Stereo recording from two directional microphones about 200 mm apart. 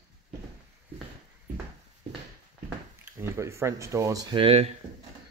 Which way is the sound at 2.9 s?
15° right (ahead or behind).